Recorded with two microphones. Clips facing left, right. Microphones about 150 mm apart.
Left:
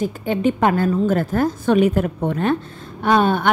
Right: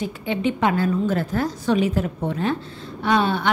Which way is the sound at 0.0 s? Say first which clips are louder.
Left 4 dB; 45° left (ahead or behind).